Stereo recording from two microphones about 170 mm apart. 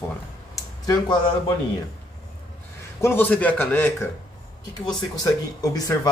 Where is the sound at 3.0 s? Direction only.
10° left (ahead or behind).